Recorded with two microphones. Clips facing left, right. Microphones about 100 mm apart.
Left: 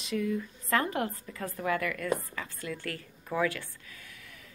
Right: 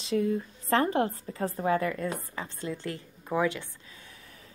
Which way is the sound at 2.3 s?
25° right (ahead or behind).